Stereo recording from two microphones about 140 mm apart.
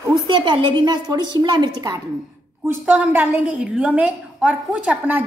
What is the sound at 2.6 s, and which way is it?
A woman's voice, 10° right (ahead or behind).